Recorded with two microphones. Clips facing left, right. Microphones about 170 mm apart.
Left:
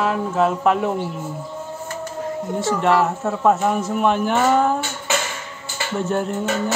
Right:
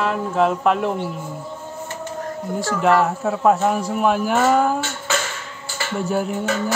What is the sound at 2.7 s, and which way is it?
Speech, centre (ahead or behind).